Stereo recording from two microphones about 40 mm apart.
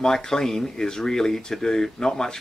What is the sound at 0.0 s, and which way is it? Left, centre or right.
Speech, centre.